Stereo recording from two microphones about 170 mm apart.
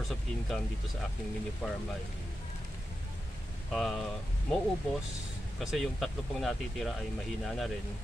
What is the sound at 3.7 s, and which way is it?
Speech, centre (ahead or behind).